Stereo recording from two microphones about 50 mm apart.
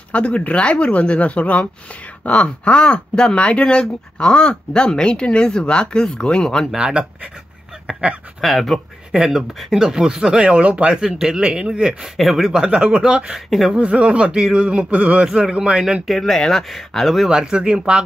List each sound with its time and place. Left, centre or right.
0.1 s speech: left
6.8 s a sound: right
8.4 s speech: centre
9.1 s speech: centre
12.2 s speech: centre
13.7 s a sound: right
15.2 s speech: centre
15.5 s a sound: centre
16.1 s speech: centre
17.3 s speech: centre